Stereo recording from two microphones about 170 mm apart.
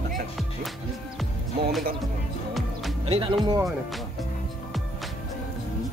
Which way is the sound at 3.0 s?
35° right (ahead or behind).